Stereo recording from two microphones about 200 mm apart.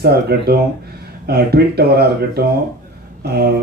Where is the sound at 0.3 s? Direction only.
50° right (ahead or behind).